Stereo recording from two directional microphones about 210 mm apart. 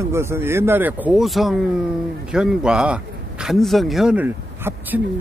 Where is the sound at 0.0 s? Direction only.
10° right (ahead or behind).